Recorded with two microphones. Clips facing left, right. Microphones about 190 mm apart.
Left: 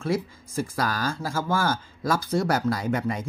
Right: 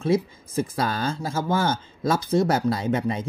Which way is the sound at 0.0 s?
20° right (ahead or behind).